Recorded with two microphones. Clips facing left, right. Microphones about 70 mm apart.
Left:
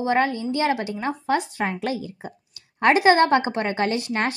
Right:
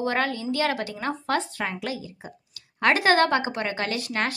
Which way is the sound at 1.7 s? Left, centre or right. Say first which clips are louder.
Left 4 dB; left.